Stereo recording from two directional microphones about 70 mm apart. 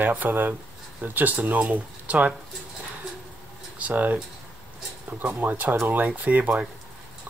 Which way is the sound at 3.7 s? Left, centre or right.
Right.